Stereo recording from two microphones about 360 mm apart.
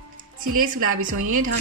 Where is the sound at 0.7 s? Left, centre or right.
Right.